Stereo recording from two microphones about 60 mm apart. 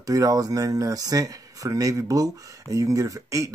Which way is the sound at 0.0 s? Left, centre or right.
Right.